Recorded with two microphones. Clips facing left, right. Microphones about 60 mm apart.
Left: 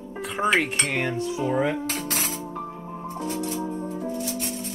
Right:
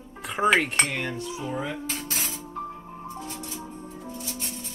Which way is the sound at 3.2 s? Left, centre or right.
Left.